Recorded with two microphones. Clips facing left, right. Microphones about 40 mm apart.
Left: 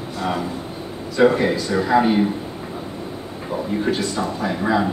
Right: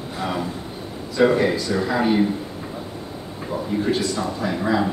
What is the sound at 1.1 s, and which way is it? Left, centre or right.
Speech, centre.